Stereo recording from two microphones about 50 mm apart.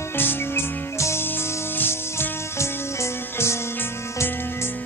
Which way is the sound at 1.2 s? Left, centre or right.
Left.